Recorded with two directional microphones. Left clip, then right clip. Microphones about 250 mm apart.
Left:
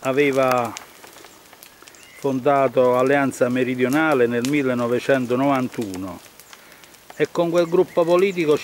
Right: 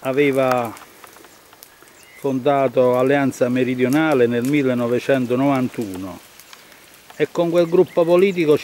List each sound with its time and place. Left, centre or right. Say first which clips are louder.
0.0 s speech: right 1 dB; centre
2.2 s speech: even; centre
7.2 s speech: right 2 dB; centre